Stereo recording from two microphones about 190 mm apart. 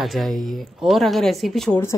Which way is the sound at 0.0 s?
Centre (ahead or behind).